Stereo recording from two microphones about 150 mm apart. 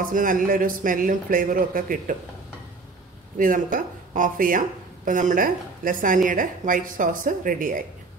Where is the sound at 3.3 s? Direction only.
65° right (ahead or behind).